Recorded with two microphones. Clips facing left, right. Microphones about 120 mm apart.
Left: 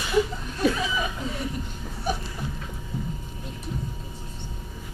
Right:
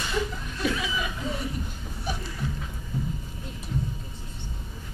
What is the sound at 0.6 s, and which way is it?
Chuckle, 40° left (ahead or behind).